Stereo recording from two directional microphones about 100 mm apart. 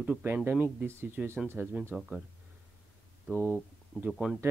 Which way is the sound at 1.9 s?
5° right (ahead or behind).